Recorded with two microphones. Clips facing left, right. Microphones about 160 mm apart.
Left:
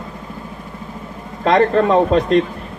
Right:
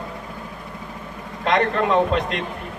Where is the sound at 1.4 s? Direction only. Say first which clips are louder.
Left 6 dB; 35° left (ahead or behind).